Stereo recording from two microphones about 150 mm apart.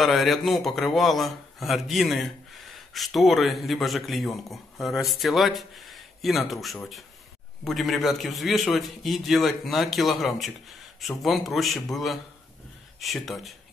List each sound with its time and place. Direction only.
0.0 s speech: centre (ahead or behind)